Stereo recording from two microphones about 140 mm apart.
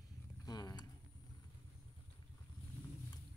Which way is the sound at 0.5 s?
30° left (ahead or behind).